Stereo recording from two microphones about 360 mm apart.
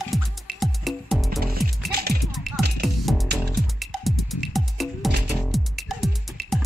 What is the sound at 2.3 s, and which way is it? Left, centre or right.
Music, centre.